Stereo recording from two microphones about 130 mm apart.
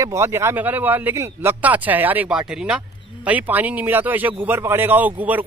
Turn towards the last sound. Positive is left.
turn(degrees=-15)  # may be behind; listen again after turning